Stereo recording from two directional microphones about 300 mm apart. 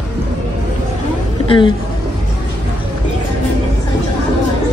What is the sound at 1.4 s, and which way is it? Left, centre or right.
Speech, centre.